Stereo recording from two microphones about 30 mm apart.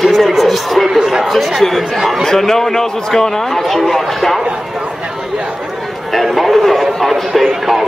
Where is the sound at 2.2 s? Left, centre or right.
Centre.